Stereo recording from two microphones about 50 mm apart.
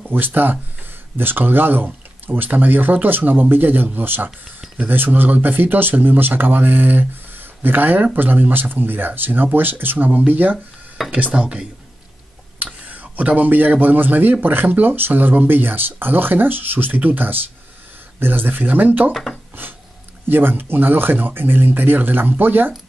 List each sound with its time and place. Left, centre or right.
0.0 s speech: right
11.0 s speech: centre
11.3 s speech: centre
12.8 s speech: right
19.6 s a sound: right
20.2 s speech: right